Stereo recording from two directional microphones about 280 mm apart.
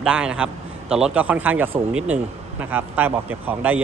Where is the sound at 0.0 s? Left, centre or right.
Centre.